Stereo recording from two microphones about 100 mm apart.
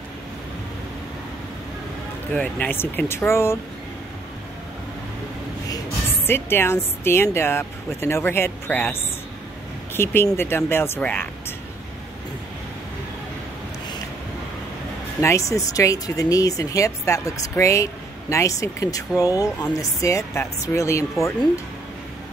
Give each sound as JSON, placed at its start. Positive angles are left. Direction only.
{"t": 2.3, "sound": "speech", "side_deg": 15}
{"t": 6.2, "sound": "speech", "side_deg": 25}
{"t": 10.2, "sound": "speech", "side_deg": 25}
{"t": 15.1, "sound": "speech", "side_deg": 30}